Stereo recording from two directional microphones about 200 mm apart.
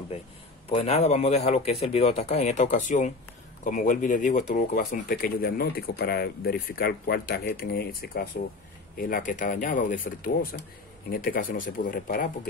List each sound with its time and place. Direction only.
0.7 s a man's voice: 30° left (ahead or behind)